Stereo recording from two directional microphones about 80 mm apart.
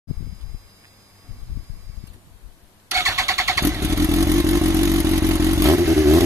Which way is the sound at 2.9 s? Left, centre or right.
Right.